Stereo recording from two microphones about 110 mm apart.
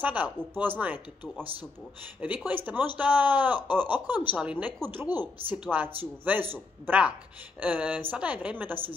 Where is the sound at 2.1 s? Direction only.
15° right (ahead or behind).